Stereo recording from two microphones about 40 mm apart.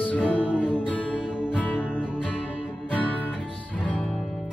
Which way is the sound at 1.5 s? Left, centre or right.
Left.